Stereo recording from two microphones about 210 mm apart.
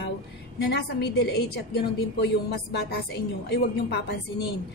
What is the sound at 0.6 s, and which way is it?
A man's voice, 50° left (ahead or behind).